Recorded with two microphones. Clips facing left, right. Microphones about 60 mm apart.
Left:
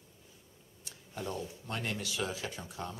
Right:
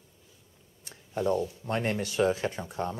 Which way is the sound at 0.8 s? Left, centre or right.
Right.